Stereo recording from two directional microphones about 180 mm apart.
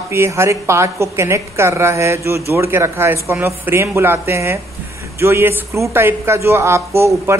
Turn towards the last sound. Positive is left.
turn(degrees=-15)  # may be behind; listen again after turning